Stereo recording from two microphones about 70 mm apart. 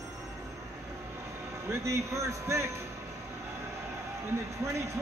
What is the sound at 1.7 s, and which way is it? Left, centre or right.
A man's voice, right.